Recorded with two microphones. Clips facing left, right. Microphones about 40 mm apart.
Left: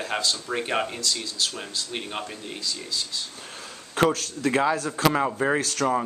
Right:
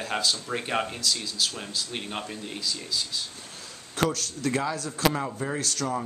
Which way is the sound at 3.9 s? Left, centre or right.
Left.